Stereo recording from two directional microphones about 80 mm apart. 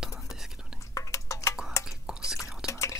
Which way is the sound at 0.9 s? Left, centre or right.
Left.